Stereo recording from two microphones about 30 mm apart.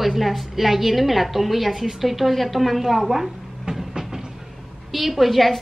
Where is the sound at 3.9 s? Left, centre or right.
Centre.